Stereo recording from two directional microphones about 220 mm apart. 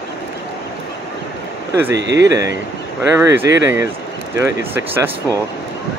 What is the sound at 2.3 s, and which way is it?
Speech, 15° right (ahead or behind).